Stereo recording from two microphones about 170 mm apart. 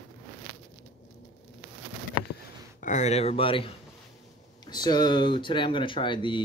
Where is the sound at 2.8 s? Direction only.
45° left (ahead or behind).